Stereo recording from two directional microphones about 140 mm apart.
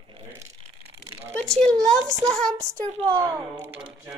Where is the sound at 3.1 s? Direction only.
25° right (ahead or behind).